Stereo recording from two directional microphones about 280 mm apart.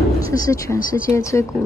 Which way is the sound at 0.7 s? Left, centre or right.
Left.